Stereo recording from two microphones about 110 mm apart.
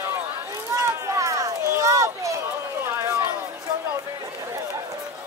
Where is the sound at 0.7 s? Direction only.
30° right (ahead or behind).